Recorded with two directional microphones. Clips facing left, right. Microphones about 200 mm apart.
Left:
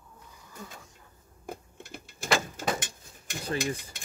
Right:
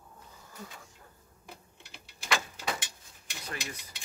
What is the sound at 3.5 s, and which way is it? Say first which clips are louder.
Filing: left 11 dB; 50° left (ahead or behind).